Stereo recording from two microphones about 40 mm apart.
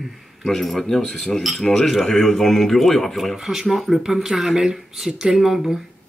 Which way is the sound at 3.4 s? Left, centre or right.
Centre.